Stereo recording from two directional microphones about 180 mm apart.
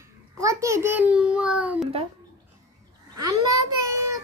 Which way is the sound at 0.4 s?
15° right (ahead or behind).